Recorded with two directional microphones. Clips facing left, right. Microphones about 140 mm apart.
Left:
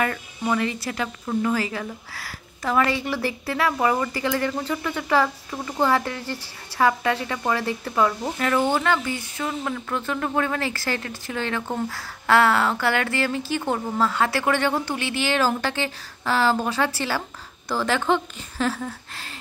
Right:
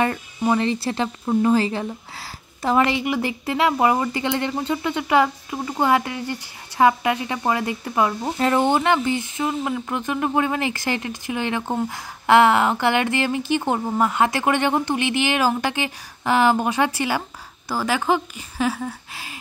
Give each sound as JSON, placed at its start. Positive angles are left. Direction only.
{"t": 0.4, "sound": "a woman's voice", "side_deg": -25}